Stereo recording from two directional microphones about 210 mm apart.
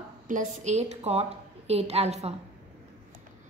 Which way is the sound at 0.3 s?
35° right (ahead or behind).